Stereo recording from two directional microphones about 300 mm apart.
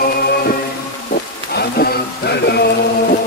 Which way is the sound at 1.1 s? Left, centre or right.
Left.